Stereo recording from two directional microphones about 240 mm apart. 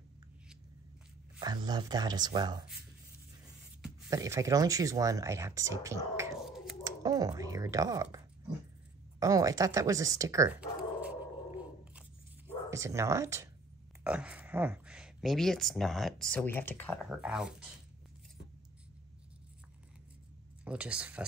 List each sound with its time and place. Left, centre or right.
1.4 s speech: centre
4.1 s speech: centre
6.4 s a sound: centre
6.8 s speech: centre
9.2 s bow-wow: centre
12.6 s speech: centre
20.6 s speech: centre